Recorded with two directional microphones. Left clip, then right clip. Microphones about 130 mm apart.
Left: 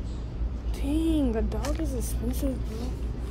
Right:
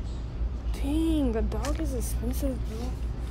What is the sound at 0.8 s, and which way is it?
Speech, 40° right (ahead or behind).